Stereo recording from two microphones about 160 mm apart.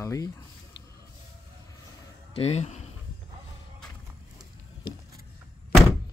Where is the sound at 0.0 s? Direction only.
20° left (ahead or behind).